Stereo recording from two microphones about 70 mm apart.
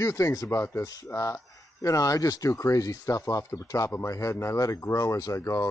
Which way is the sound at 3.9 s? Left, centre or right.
Left.